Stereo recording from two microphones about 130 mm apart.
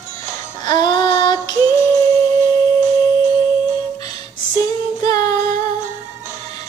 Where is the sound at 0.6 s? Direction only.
35° left (ahead or behind).